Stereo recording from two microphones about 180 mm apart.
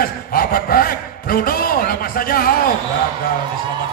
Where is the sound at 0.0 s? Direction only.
55° left (ahead or behind).